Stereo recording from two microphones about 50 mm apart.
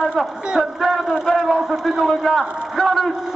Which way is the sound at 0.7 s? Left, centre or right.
Centre.